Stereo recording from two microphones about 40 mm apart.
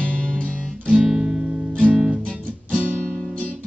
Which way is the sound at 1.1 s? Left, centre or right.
Centre.